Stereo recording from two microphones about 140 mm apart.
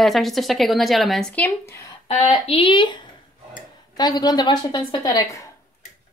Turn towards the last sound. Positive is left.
turn(degrees=25)  # may be behind; listen again after turning